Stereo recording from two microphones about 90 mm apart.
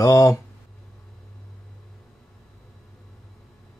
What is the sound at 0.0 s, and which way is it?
Speech, 40° left (ahead or behind).